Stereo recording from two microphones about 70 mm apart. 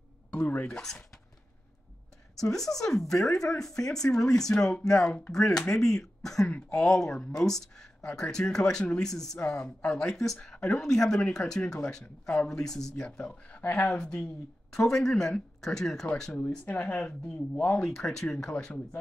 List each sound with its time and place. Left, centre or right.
0.3 s speech: left
0.7 s speech: centre
2.5 s speech: centre
16.3 s speech: left